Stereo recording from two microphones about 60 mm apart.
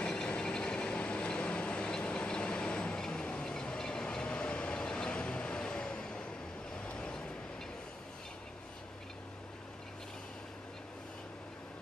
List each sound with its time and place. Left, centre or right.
0.0 s train: centre
6.7 s vehicle: centre